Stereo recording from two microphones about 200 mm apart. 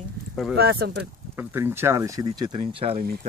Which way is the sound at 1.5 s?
10° right (ahead or behind).